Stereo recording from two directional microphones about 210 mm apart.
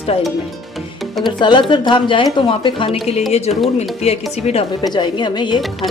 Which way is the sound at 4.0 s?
30° left (ahead or behind).